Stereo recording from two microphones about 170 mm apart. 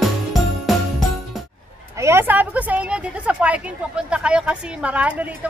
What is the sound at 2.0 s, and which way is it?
A woman's voice, 15° right (ahead or behind).